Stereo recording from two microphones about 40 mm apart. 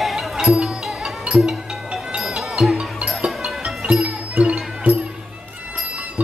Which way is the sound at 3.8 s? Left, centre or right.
Right.